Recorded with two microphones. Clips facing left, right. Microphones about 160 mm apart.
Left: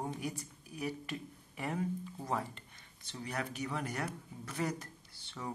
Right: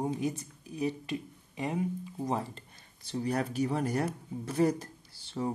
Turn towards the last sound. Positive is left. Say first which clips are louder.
# right 9 dB
turn(degrees=-35)  # may be behind; listen again after turning